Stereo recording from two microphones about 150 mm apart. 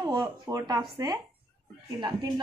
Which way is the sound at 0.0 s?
25° right (ahead or behind).